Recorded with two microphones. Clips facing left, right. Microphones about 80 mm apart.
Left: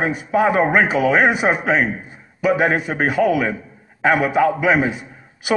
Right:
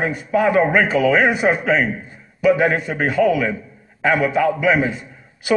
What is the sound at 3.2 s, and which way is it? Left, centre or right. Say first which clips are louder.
A man's voice: right 2 dB; left.